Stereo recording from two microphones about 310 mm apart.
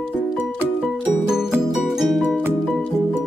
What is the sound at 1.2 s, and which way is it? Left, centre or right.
Music, centre.